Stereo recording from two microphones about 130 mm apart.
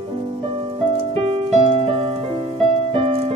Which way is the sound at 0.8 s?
45° right (ahead or behind).